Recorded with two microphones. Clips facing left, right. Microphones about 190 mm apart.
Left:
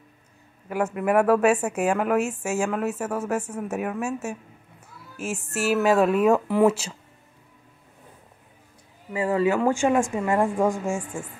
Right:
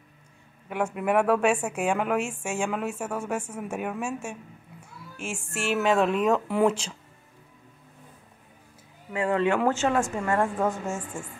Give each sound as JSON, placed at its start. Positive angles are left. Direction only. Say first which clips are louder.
{"t": 0.9, "sound": "a woman's voice", "louder": "left 3 dB", "side_deg": 5}
{"t": 5.1, "sound": "music", "louder": "left 5 dB", "side_deg": 5}
{"t": 5.5, "sound": "a woman's voice", "louder": "left 3 dB", "side_deg": 5}
{"t": 9.1, "sound": "a woman's voice", "louder": "left 2 dB", "side_deg": 5}